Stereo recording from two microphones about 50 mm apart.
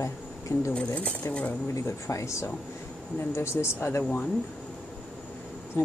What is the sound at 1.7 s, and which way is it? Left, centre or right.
Speech, left.